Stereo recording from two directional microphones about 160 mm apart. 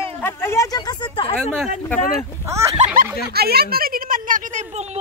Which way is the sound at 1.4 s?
5° left (ahead or behind).